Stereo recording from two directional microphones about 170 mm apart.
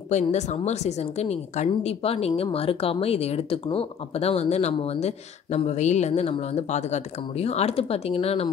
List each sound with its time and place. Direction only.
0.1 s a woman's voice: 45° left (ahead or behind)